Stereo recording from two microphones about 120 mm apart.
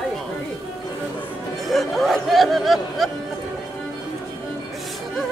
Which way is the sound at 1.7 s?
Centre (ahead or behind).